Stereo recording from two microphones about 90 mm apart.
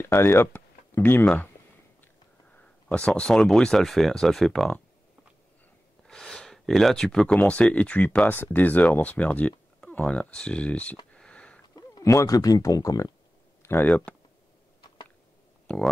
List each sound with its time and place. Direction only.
0.0 s speech: 25° left (ahead or behind)
1.2 s speech: 10° left (ahead or behind)
2.9 s speech: 10° left (ahead or behind)
6.0 s a sound: 5° left (ahead or behind)
7.3 s speech: 15° left (ahead or behind)
11.1 s sniff: 10° left (ahead or behind)
12.0 s speech: 35° left (ahead or behind)
13.6 s speech: 25° left (ahead or behind)
15.6 s a sound: 5° left (ahead or behind)